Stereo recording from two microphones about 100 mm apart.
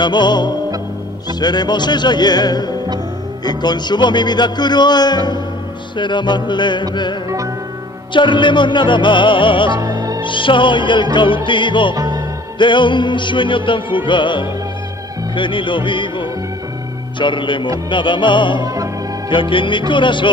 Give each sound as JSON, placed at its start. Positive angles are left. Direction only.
{"t": 0.0, "sound": "music", "side_deg": 50}
{"t": 8.1, "sound": "music", "side_deg": 55}
{"t": 9.8, "sound": "music", "side_deg": -35}
{"t": 10.2, "sound": "speech", "side_deg": 55}
{"t": 11.9, "sound": "music", "side_deg": -40}
{"t": 12.5, "sound": "music", "side_deg": 55}
{"t": 15.3, "sound": "speech", "side_deg": 55}
{"t": 17.2, "sound": "music", "side_deg": 55}
{"t": 18.6, "sound": "music", "side_deg": -35}
{"t": 19.2, "sound": "speech", "side_deg": 55}
{"t": 19.9, "sound": "music", "side_deg": 55}